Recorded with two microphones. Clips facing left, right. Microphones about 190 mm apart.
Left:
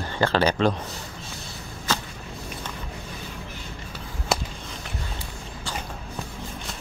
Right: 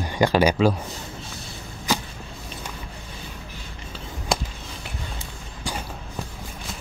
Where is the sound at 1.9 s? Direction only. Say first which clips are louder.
Right 3 dB; 15° right (ahead or behind).